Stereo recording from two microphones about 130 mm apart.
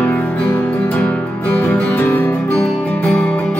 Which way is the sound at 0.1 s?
10° left (ahead or behind).